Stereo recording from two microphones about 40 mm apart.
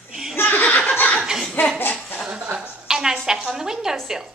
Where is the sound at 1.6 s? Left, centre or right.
Left.